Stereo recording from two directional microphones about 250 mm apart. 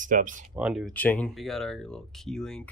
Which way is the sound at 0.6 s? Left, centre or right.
Centre.